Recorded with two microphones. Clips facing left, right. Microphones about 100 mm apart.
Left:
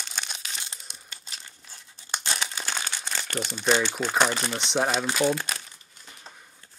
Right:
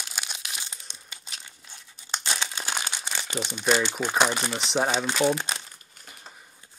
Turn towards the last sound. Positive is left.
turn(degrees=-20)  # may be behind; listen again after turning